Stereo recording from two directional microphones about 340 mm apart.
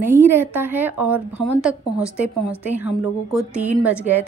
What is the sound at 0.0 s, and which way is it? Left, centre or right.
A woman's voice, centre.